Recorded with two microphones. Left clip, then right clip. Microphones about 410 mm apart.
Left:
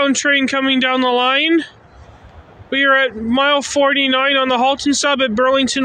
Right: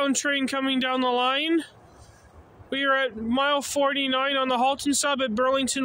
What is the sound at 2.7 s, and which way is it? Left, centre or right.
Speech, right.